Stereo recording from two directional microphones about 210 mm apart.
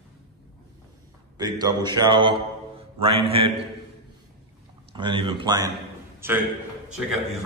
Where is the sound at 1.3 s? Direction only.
20° right (ahead or behind).